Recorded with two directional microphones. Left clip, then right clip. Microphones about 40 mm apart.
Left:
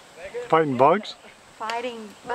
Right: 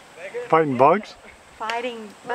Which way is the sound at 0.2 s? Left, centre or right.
Centre.